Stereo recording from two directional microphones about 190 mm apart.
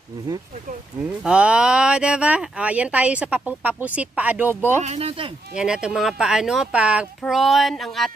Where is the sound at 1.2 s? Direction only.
5° right (ahead or behind).